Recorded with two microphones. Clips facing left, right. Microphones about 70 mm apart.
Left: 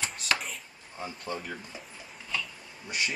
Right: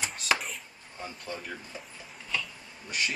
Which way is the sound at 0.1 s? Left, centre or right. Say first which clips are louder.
Right 1 dB; centre.